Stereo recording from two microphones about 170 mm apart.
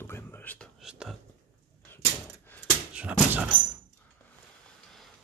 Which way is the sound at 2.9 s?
5° right (ahead or behind).